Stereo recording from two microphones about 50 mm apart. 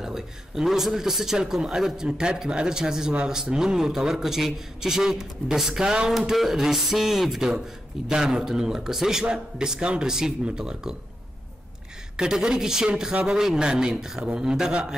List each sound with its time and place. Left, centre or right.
0.0 s a man's voice: centre
12.2 s a man's voice: centre